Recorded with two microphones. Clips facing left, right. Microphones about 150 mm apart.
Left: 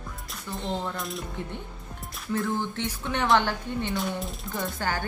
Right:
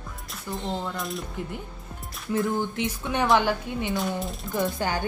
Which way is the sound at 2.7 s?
15° right (ahead or behind).